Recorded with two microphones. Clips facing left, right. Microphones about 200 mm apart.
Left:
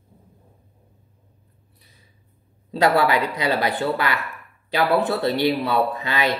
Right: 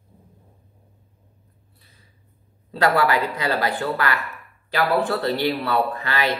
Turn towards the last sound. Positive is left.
turn(degrees=15)  # may be behind; listen again after turning